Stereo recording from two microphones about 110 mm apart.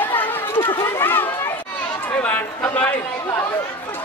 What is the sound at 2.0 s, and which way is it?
Chatter, 15° left (ahead or behind).